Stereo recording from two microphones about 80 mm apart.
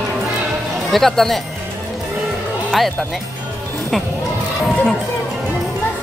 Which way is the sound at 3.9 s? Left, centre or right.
Centre.